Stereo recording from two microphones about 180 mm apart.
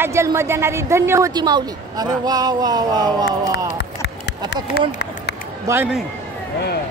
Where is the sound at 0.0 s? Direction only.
15° right (ahead or behind).